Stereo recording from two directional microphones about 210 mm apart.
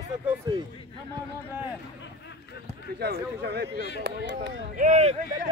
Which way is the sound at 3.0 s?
50° right (ahead or behind).